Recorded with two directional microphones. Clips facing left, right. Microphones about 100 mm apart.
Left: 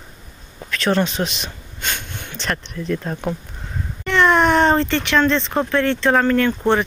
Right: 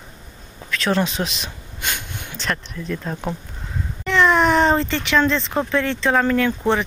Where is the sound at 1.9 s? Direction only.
10° right (ahead or behind).